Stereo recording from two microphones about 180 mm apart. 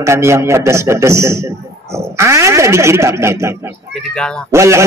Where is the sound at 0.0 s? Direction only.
15° right (ahead or behind).